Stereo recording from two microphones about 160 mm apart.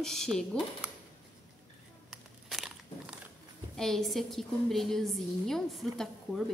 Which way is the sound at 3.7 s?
5° left (ahead or behind).